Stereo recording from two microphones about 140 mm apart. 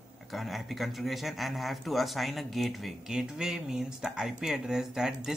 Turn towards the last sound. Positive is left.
turn(degrees=-5)  # may be behind; listen again after turning